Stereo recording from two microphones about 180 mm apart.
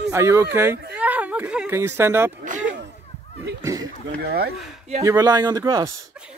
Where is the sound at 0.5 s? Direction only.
15° right (ahead or behind).